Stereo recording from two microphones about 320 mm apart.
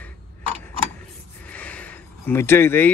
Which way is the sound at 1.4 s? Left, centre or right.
Centre.